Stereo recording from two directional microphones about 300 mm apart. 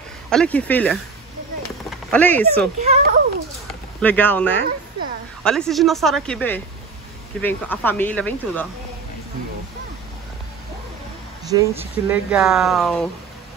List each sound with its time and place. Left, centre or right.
0.3 s speech: centre
2.8 s a child's voice: right
4.0 s speech: centre
11.5 s speech: centre